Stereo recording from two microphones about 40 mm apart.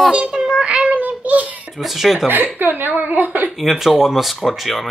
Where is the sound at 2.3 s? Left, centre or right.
Right.